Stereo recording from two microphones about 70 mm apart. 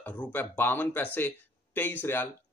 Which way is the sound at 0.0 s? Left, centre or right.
Left.